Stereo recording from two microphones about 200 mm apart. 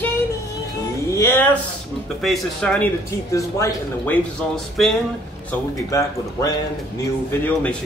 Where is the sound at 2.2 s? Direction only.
Centre (ahead or behind).